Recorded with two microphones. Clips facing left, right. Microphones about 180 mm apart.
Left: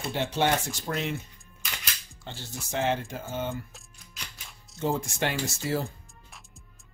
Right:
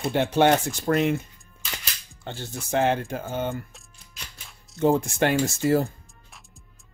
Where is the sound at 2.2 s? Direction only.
55° right (ahead or behind).